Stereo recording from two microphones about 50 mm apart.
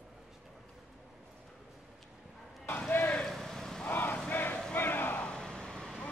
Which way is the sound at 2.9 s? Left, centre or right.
Left.